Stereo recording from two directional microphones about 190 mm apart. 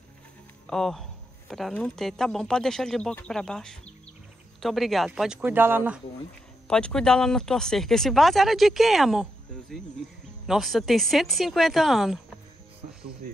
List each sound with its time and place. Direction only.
0.7 s speech: centre (ahead or behind)
6.7 s speech: 5° left (ahead or behind)
13.2 s speech: 50° right (ahead or behind)